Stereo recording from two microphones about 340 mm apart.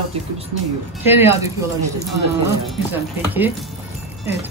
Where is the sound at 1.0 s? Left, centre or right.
Centre.